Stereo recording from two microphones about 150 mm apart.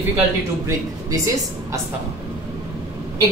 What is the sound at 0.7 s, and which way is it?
Speech, 20° right (ahead or behind).